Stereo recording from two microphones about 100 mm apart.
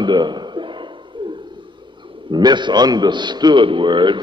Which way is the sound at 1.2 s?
55° right (ahead or behind).